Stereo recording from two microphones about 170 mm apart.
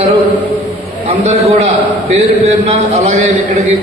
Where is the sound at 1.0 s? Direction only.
35° right (ahead or behind).